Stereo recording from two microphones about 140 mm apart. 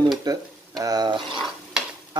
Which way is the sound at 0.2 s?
25° right (ahead or behind).